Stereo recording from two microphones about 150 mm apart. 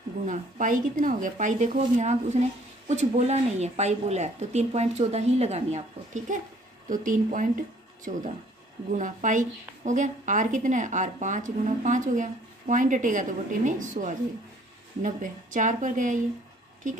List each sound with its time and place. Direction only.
0.3 s a woman's voice: 60° right (ahead or behind)